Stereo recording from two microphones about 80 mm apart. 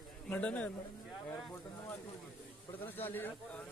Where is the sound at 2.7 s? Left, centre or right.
Left.